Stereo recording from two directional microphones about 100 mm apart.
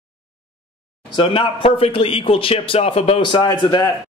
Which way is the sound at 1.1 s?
60° left (ahead or behind).